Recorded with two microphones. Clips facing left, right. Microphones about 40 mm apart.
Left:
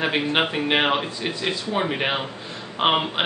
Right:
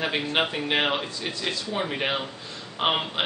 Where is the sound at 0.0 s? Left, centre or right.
Centre.